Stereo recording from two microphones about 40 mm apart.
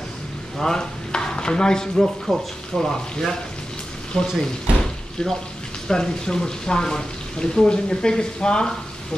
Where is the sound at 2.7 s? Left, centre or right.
Centre.